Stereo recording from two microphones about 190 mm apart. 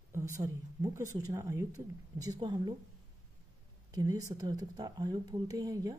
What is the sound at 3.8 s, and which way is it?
Speech, 20° right (ahead or behind).